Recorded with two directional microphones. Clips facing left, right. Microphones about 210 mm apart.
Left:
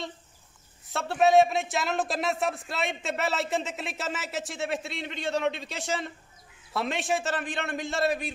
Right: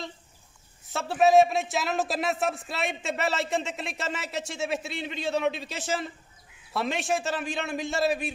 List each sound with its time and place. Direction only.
0.8 s a man's voice: centre (ahead or behind)